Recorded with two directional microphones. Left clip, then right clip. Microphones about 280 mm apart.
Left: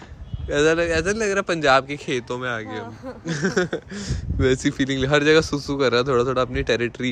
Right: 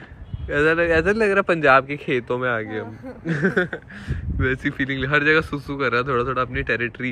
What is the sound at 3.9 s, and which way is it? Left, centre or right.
A man's voice, left.